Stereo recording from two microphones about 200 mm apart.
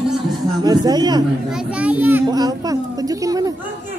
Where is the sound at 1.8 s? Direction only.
5° right (ahead or behind).